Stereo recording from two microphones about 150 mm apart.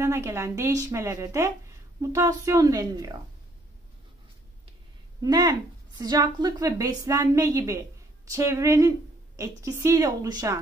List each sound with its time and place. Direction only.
0.0 s speech: 20° right (ahead or behind)
5.2 s speech: 25° right (ahead or behind)